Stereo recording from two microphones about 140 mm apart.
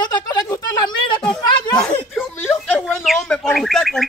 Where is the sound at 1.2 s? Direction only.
10° left (ahead or behind).